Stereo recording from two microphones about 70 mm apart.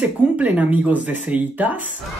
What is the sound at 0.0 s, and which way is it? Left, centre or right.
Speech, right.